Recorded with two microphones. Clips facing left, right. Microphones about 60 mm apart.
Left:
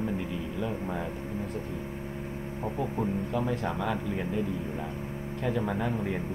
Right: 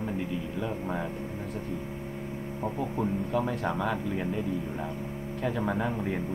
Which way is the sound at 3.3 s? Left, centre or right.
Centre.